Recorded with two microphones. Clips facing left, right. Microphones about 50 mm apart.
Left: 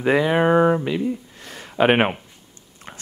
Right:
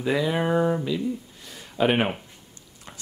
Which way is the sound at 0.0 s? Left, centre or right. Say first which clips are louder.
Left 6 dB; left.